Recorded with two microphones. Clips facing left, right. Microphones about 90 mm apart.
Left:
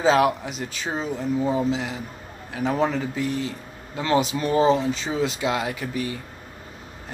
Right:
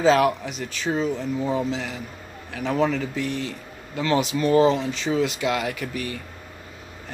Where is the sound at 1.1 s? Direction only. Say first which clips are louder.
Left 2 dB; 5° left (ahead or behind).